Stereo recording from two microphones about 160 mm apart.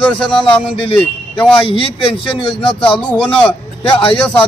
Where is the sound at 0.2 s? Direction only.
30° left (ahead or behind).